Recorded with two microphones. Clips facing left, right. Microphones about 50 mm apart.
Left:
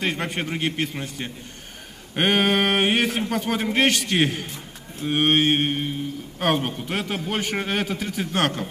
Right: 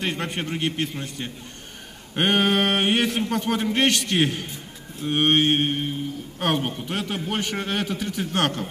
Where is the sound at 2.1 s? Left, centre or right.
Centre.